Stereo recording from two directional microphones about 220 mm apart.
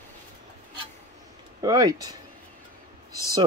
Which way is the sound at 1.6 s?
15° right (ahead or behind).